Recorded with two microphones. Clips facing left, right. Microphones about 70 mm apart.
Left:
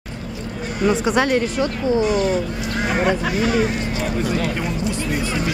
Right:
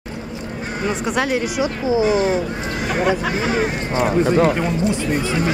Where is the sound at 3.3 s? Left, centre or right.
Right.